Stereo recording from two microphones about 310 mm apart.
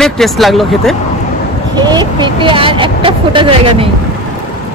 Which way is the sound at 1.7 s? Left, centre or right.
Centre.